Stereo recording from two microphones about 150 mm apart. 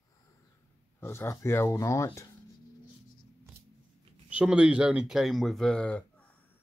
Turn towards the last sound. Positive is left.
turn(degrees=10)  # may be behind; listen again after turning